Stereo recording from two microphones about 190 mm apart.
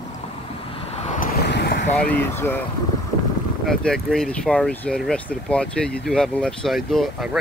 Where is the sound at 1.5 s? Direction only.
60° left (ahead or behind).